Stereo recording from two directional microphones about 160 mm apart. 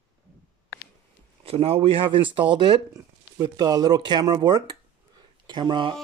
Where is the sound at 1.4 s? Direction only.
40° right (ahead or behind).